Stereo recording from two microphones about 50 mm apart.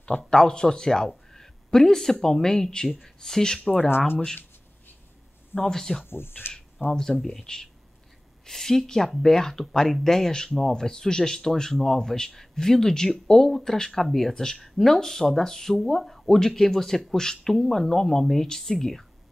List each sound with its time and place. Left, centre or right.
0.3 s speech: centre
5.7 s speech: centre
6.0 s speech: left
6.9 s speech: centre